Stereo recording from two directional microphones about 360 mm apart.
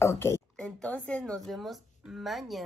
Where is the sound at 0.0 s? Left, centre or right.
Centre.